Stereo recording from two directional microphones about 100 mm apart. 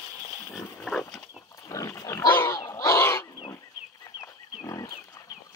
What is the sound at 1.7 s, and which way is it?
Pig, 35° left (ahead or behind).